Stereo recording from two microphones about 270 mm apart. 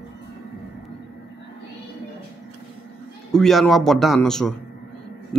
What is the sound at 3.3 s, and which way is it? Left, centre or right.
A man's voice, centre.